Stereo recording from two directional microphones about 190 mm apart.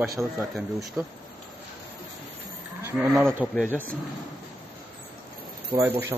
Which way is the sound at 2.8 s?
15° right (ahead or behind).